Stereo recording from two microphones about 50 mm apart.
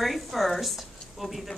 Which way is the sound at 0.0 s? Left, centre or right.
Centre.